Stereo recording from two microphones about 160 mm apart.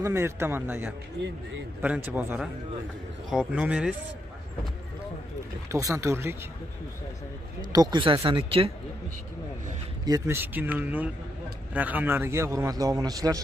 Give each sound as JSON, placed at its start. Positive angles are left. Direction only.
{"t": 0.0, "sound": "a man's voice", "side_deg": -15}
{"t": 5.7, "sound": "a man's voice", "side_deg": -20}
{"t": 7.7, "sound": "speech", "side_deg": -25}
{"t": 10.0, "sound": "a man's voice", "side_deg": -20}